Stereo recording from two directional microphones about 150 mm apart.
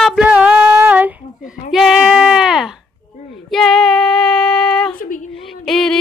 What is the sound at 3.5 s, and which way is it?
Child singing, centre (ahead or behind).